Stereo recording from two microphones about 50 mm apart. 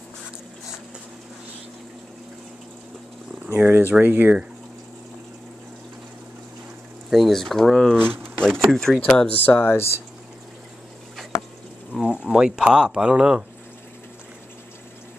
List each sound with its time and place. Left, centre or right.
3.5 s speech: right
7.1 s speech: centre
7.3 s speech: centre
8.0 s speech: right
8.4 s speech: centre
9.6 s speech: left
11.9 s a sound: centre
12.4 s speech: centre